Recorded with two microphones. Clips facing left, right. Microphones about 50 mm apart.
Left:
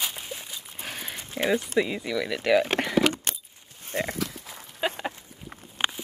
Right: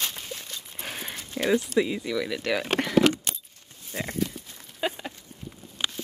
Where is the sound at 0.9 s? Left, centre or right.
Centre.